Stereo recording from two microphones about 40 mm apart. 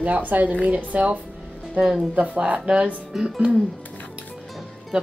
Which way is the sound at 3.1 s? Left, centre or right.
Centre.